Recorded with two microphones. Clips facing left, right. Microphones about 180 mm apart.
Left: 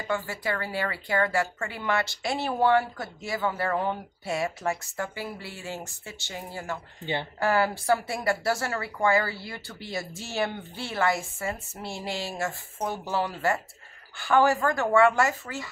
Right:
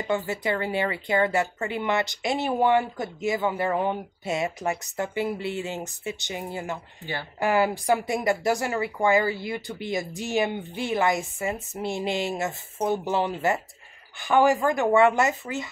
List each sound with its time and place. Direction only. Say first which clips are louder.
0.0 s a woman's voice: right 4 dB; 20° right (ahead or behind)